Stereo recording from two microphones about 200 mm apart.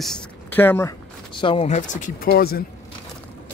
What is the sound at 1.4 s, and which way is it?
Speech, 30° left (ahead or behind).